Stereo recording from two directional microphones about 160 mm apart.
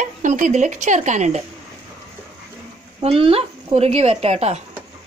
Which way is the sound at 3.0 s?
35° right (ahead or behind).